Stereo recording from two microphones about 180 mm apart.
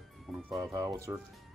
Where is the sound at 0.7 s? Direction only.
20° right (ahead or behind).